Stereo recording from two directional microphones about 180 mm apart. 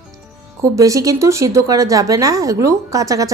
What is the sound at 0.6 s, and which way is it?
A woman's voice, 15° right (ahead or behind).